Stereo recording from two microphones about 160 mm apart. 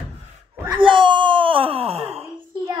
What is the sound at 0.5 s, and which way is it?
Wail, 15° right (ahead or behind).